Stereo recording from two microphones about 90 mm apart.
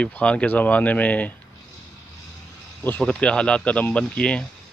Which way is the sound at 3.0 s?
10° left (ahead or behind).